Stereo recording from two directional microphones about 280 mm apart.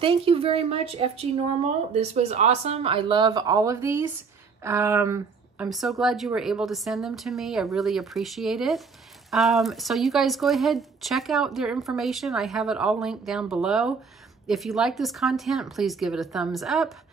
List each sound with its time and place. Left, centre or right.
0.0 s speech: centre